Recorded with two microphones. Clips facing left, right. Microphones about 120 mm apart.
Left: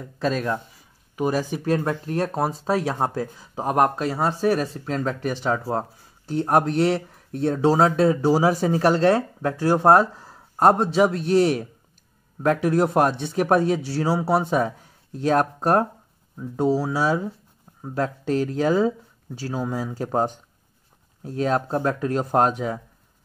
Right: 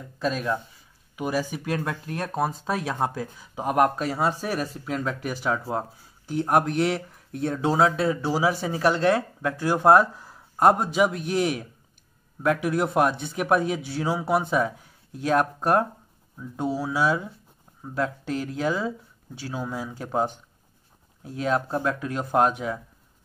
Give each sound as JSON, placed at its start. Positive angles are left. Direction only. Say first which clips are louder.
{"t": 1.1, "sound": "speech", "louder": "left 4 dB", "side_deg": 40}
{"t": 12.6, "sound": "speech", "louder": "left 4 dB", "side_deg": 35}